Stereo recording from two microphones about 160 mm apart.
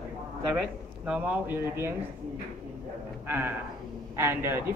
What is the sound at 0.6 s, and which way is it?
Speech, 5° right (ahead or behind).